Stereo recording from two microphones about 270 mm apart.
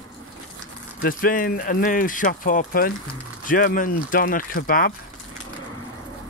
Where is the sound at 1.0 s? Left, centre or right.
Left.